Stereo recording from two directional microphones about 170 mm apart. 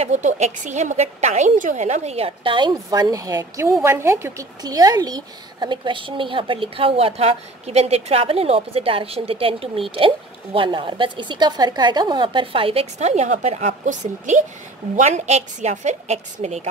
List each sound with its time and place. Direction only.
0.0 s speech: 45° right (ahead or behind)